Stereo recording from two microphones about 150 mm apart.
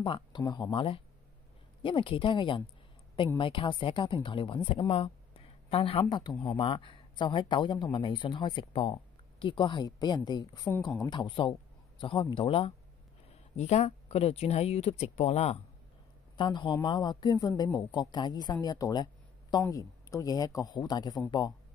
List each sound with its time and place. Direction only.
0.0 s speech: 35° left (ahead or behind)
16.3 s a woman's voice: 30° left (ahead or behind)